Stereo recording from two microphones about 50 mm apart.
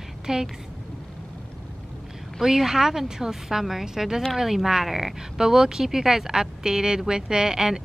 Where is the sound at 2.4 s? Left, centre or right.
Centre.